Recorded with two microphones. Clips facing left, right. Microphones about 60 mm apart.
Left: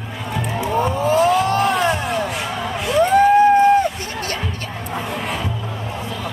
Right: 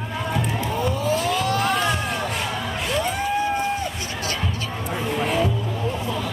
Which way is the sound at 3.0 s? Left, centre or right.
Left.